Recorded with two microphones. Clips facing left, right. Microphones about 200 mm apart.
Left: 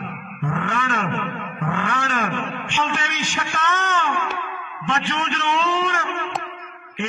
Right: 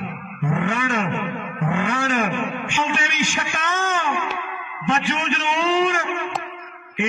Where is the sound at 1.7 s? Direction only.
10° right (ahead or behind).